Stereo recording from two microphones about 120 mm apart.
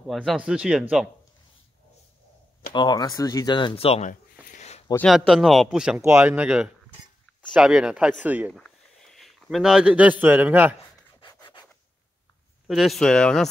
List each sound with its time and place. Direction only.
0.0 s speech: centre (ahead or behind)
2.7 s speech: 40° left (ahead or behind); by 4.0 s 55° left (ahead or behind)
4.0 s a sound: 80° left
5.0 s speech: 5° right (ahead or behind)
8.5 s speech: 5° left (ahead or behind); by 10.8 s 15° right (ahead or behind)
11.1 s rub: 40° left (ahead or behind)
12.6 s speech: centre (ahead or behind)